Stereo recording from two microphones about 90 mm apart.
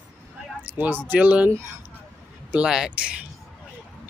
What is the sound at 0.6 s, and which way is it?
Speech, 20° right (ahead or behind).